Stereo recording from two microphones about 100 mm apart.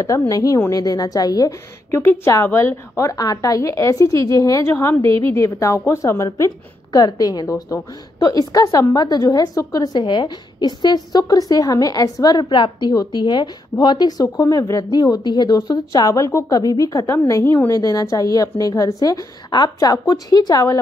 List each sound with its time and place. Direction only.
0.3 s speech: 35° left (ahead or behind)
1.9 s a woman's voice: 25° left (ahead or behind); by 12.9 s 55° left (ahead or behind)
12.9 s speech: 40° left (ahead or behind)